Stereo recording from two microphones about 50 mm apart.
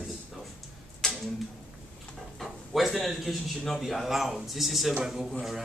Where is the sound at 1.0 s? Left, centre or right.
Centre.